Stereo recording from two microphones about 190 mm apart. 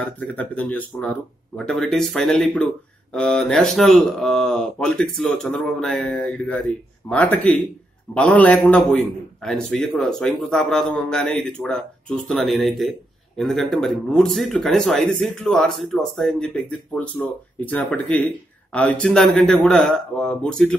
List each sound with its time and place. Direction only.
0.2 s speech: 10° left (ahead or behind)